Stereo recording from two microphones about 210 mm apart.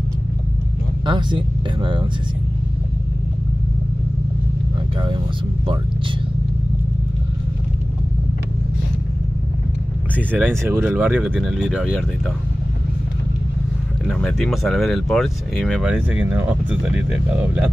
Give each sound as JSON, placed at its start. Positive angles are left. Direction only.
{"t": 1.0, "sound": "speech", "side_deg": -20}
{"t": 10.1, "sound": "speech", "side_deg": -10}
{"t": 14.0, "sound": "speech", "side_deg": 5}